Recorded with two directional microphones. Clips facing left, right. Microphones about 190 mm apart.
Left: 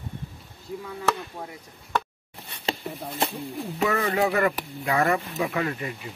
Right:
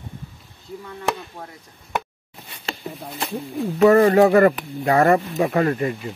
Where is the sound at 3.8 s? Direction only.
50° right (ahead or behind).